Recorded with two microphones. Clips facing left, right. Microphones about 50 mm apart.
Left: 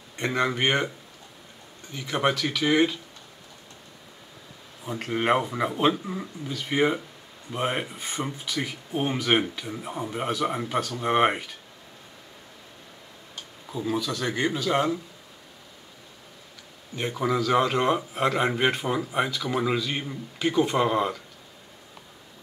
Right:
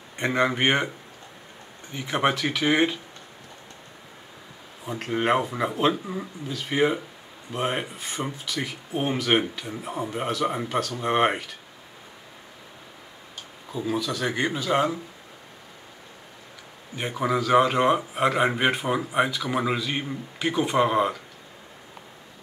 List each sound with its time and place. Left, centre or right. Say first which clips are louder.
0.2 s speech: right 2 dB; centre
1.9 s speech: right 1 dB; centre
4.8 s speech: even; centre
13.7 s speech: right 1 dB; centre
16.9 s speech: right 1 dB; centre